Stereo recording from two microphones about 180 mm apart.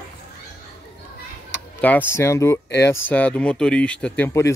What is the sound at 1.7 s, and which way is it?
Speech, 10° left (ahead or behind).